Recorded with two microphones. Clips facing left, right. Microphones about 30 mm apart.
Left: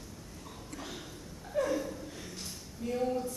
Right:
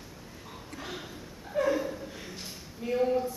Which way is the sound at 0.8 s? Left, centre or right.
Centre.